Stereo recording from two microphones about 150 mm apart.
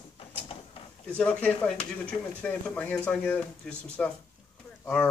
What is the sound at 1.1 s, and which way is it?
Speech, 10° left (ahead or behind).